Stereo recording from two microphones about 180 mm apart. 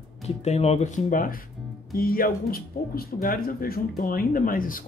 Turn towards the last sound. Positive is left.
turn(degrees=50)  # may be behind; listen again after turning